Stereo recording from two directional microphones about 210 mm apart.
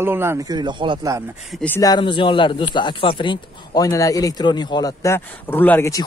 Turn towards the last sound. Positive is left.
turn(degrees=10)  # may be behind; listen again after turning